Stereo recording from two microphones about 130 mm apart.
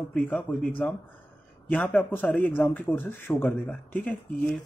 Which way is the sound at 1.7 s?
10° left (ahead or behind).